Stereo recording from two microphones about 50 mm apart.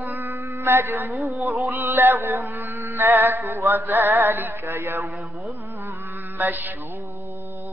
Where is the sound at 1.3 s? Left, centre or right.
Right.